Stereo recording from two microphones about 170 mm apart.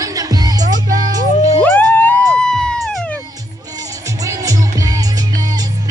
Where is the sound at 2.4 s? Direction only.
5° left (ahead or behind).